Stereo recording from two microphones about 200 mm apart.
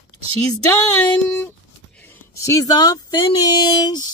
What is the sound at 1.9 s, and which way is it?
Speech, 10° left (ahead or behind).